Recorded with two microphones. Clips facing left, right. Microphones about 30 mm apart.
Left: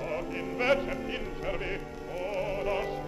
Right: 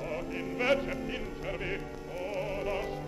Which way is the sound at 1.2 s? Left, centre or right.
Centre.